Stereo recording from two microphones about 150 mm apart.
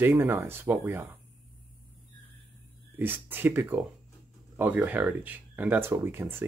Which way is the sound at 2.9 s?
15° right (ahead or behind).